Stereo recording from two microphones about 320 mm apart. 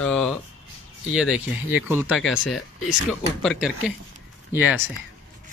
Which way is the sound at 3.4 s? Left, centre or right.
Centre.